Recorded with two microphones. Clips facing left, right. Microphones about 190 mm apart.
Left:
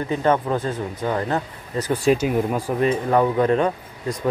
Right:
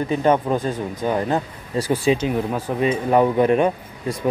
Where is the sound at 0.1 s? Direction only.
15° right (ahead or behind).